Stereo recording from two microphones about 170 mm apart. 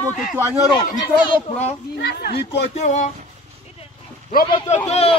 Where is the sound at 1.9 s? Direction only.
75° left (ahead or behind).